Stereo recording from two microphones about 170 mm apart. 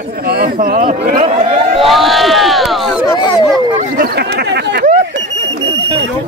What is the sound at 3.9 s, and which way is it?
Speech, 70° right (ahead or behind).